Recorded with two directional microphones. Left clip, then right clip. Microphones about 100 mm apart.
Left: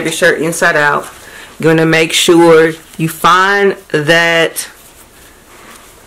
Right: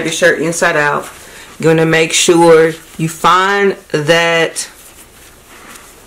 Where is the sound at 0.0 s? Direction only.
20° left (ahead or behind).